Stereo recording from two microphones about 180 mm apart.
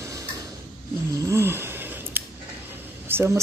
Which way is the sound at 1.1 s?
15° right (ahead or behind).